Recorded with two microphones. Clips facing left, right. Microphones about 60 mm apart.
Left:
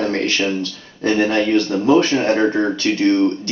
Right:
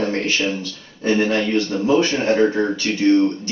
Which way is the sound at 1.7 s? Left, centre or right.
Centre.